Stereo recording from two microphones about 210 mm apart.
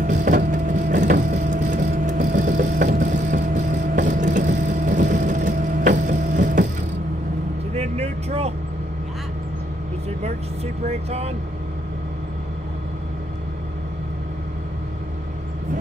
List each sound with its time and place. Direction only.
0.0 s vehicle: 40° right (ahead or behind)
7.7 s vehicle: 30° right (ahead or behind)
10.2 s vehicle: 30° right (ahead or behind)